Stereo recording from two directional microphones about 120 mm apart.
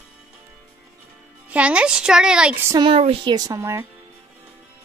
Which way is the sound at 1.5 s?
10° right (ahead or behind).